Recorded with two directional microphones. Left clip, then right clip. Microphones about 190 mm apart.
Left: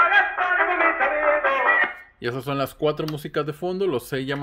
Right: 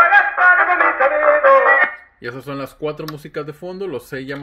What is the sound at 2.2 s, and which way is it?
Speech, 20° left (ahead or behind).